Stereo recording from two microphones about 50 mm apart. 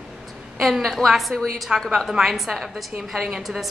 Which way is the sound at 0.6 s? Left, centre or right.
Centre.